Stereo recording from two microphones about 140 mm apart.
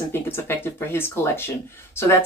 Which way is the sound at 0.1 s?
15° left (ahead or behind).